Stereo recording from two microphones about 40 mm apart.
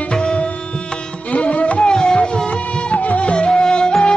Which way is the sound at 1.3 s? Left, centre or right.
Left.